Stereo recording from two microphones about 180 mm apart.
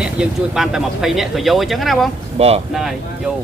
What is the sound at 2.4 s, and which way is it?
Speech, 35° right (ahead or behind).